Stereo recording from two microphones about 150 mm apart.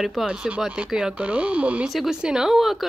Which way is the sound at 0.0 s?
Centre (ahead or behind).